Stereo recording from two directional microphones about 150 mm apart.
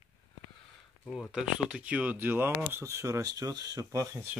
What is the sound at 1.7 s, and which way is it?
Speech, 10° right (ahead or behind).